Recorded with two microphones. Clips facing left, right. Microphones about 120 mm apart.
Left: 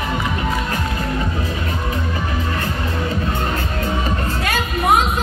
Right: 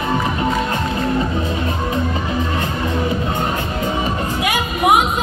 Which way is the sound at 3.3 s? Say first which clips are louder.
Right 2 dB; 15° right (ahead or behind).